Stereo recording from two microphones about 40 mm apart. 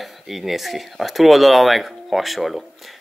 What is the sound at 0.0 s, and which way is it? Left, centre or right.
Speech, centre.